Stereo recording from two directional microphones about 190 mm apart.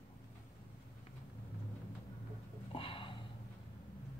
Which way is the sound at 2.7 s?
30° left (ahead or behind).